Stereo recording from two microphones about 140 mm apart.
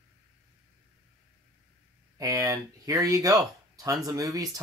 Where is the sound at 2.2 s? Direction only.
20° right (ahead or behind).